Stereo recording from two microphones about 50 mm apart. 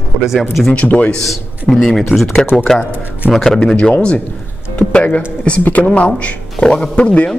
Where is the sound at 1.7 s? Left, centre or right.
Centre.